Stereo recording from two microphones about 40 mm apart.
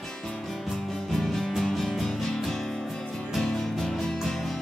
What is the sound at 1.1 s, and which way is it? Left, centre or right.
Music, centre.